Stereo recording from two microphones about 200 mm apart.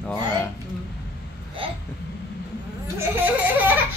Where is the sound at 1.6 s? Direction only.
25° right (ahead or behind).